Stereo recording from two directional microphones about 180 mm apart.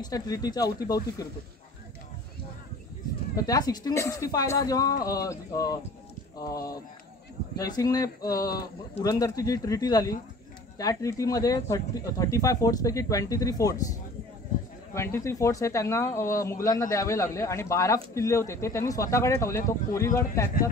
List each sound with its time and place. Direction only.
0.0 s speech: 20° left (ahead or behind)
3.3 s speech: 20° left (ahead or behind)
15.0 s speech: 15° left (ahead or behind)